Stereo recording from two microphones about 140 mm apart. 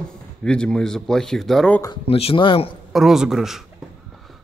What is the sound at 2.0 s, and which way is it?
Speech, 45° left (ahead or behind).